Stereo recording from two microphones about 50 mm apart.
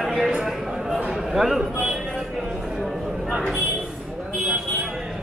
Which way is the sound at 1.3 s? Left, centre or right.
Centre.